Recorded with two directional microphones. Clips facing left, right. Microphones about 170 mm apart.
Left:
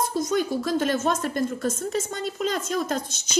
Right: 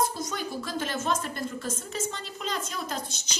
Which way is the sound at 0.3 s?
45° left (ahead or behind).